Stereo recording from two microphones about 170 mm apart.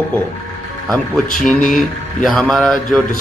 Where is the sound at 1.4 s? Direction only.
50° left (ahead or behind).